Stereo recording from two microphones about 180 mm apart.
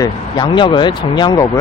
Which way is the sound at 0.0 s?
25° left (ahead or behind).